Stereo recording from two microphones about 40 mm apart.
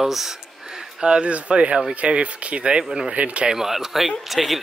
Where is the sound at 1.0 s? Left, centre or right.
Right.